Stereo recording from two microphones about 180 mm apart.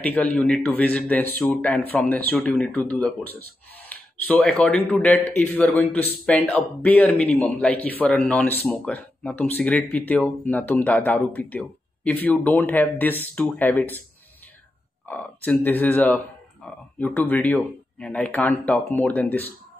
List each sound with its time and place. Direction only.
0.0 s speech: 10° left (ahead or behind)
15.0 s speech: 10° left (ahead or behind)